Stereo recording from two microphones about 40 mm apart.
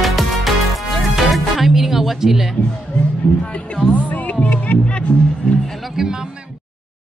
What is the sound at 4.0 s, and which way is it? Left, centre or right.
Music, left.